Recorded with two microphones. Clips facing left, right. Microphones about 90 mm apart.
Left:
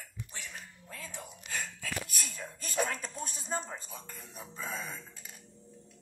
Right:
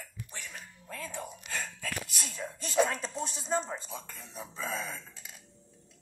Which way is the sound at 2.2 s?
30° right (ahead or behind).